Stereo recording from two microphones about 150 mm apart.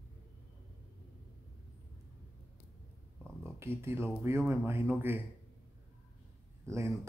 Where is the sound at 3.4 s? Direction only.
15° right (ahead or behind).